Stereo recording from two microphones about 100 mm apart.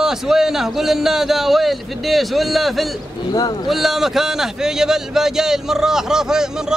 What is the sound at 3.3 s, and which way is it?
Speech, 40° left (ahead or behind).